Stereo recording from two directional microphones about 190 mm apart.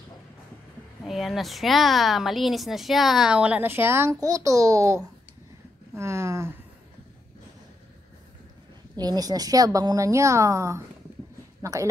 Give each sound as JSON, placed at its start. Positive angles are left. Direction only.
{"t": 1.0, "sound": "a woman's voice", "side_deg": 0}
{"t": 8.9, "sound": "a woman's voice", "side_deg": -20}